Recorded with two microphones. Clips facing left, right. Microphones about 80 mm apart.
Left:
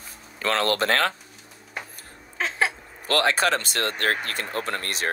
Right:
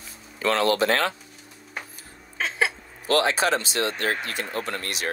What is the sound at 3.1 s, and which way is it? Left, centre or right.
Speech, left.